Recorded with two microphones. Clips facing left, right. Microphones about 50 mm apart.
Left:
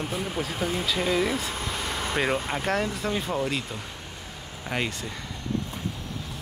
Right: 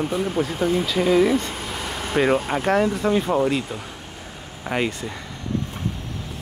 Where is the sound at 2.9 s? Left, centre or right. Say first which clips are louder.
Right 8 dB; centre.